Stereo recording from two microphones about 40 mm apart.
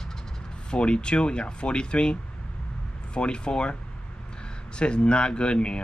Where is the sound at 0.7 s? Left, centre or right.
Left.